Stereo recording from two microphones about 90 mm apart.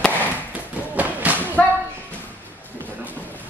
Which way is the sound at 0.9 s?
15° right (ahead or behind).